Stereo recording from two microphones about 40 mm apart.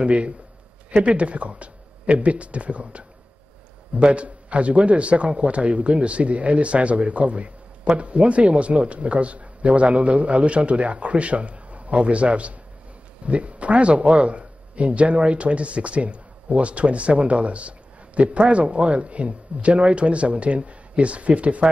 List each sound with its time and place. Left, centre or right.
0.0 s a man's voice: right